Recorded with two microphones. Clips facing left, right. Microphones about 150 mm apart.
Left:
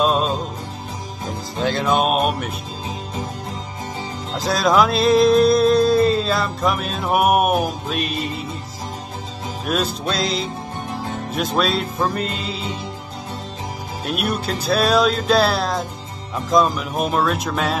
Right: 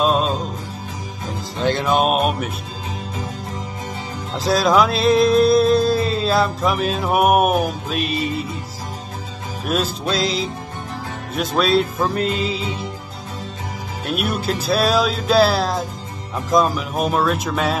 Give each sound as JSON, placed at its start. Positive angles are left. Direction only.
{"t": 0.0, "sound": "music", "side_deg": 0}
{"t": 1.6, "sound": "music", "side_deg": 0}
{"t": 4.4, "sound": "music", "side_deg": 0}
{"t": 9.7, "sound": "music", "side_deg": 0}
{"t": 14.0, "sound": "music", "side_deg": 0}